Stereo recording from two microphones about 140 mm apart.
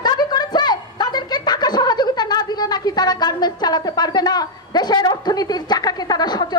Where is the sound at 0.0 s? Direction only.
30° left (ahead or behind).